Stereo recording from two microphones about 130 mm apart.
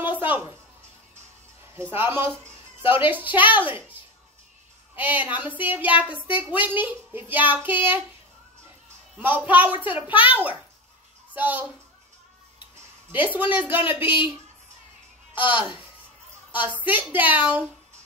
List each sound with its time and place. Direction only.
0.0 s a sound: 15° right (ahead or behind)
1.8 s speech: 15° right (ahead or behind)
4.9 s speech: 15° right (ahead or behind)
9.1 s speech: 10° right (ahead or behind)
14.0 s speech: 40° left (ahead or behind)
16.5 s speech: 15° right (ahead or behind)